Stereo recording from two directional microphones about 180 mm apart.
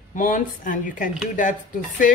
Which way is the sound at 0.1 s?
50° left (ahead or behind).